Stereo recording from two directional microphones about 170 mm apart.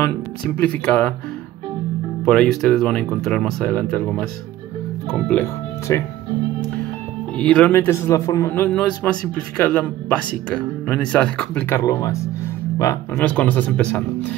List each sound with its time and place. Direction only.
0.6 s a man's voice: 10° left (ahead or behind)
2.2 s a man's voice: 5° left (ahead or behind)
7.3 s a man's voice: 5° left (ahead or behind)
11.8 s a man's voice: 20° left (ahead or behind)